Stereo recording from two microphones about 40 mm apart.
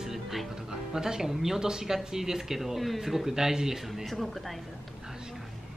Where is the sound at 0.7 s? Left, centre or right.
Centre.